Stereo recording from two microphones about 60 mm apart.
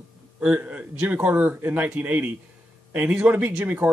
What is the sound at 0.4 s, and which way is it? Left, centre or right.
Speech, centre.